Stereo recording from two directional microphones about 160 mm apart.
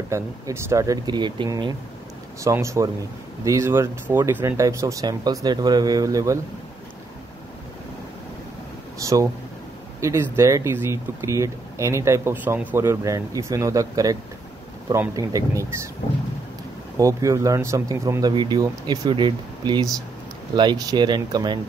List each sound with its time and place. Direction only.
0.1 s speech: 15° right (ahead or behind)
8.9 s speech: 20° right (ahead or behind)
16.9 s speech: 20° right (ahead or behind)